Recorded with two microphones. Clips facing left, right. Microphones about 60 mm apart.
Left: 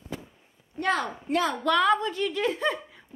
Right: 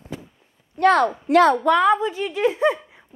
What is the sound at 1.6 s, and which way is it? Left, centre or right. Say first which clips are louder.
A woman's voice: right 5 dB; centre.